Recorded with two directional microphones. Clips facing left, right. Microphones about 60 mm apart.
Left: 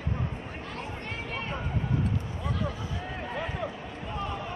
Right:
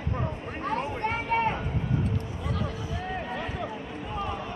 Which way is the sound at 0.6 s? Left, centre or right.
Right.